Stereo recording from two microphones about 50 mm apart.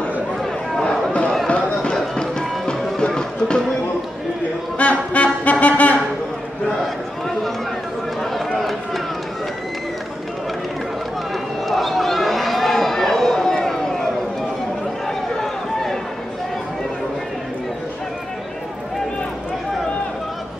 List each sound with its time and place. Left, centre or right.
1.5 s run: centre
2.1 s music: centre
4.7 s music: left
6.8 s a sound: centre
8.2 s run: centre
11.7 s run: centre
15.0 s run: centre